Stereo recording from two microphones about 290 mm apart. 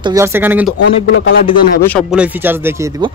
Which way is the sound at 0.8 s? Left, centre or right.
Left.